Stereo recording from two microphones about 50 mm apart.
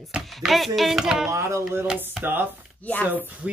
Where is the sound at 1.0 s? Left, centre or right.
Centre.